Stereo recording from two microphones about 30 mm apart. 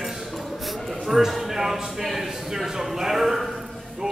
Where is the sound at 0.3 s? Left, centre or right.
Centre.